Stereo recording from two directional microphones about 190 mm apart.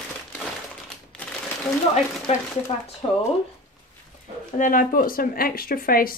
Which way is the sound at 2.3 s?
35° left (ahead or behind).